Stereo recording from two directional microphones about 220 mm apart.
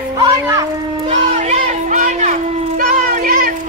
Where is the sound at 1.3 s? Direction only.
35° right (ahead or behind).